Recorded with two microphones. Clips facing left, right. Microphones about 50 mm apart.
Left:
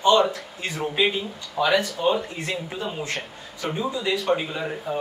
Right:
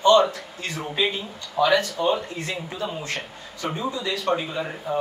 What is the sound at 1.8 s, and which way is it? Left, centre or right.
A man's voice, centre.